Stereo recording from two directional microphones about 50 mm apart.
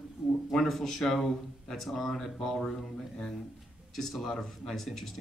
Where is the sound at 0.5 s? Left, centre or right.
Centre.